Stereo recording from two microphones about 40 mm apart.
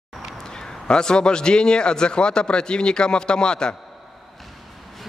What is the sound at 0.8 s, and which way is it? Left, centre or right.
A man's voice, centre.